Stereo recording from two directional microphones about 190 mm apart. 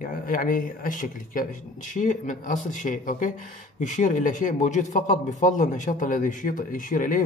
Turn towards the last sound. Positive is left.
turn(degrees=45)  # may be behind; listen again after turning